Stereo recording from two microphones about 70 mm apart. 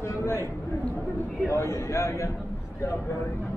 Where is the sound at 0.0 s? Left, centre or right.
Left.